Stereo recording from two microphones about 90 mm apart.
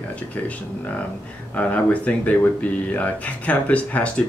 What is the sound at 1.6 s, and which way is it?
Speech, 15° left (ahead or behind).